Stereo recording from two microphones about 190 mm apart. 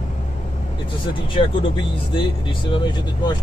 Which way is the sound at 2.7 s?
25° left (ahead or behind).